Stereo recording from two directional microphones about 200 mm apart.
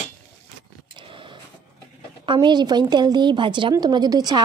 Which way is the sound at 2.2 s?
25° right (ahead or behind).